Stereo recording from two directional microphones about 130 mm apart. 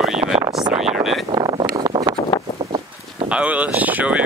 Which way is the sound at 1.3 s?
35° right (ahead or behind).